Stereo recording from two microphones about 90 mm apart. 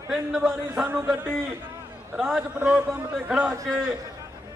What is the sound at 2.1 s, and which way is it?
A man's voice, 5° right (ahead or behind).